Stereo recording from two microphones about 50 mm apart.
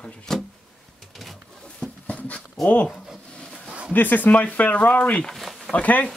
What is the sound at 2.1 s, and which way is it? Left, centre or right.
Dog, left.